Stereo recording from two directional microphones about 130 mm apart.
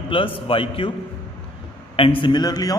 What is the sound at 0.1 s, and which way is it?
Speech, 45° left (ahead or behind).